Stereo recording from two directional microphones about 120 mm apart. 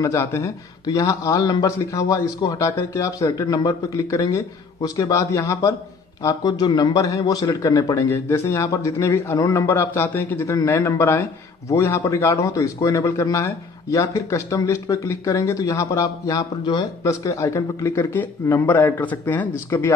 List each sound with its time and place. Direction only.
0.0 s a man's voice: 25° left (ahead or behind)
18.1 s speech: 15° left (ahead or behind)